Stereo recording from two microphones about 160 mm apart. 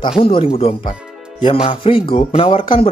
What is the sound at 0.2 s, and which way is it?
Speech, 35° left (ahead or behind).